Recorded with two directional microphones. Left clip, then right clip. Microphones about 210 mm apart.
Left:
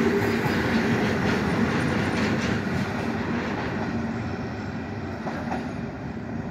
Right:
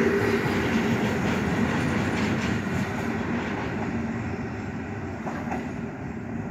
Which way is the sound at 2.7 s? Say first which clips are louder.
Left 1 dB; centre (ahead or behind).